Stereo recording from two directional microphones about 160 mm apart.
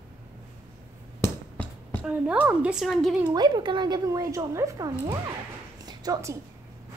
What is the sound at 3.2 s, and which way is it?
A woman's voice, 25° right (ahead or behind).